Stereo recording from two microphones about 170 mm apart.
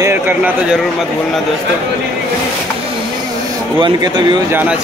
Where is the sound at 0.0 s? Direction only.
15° right (ahead or behind).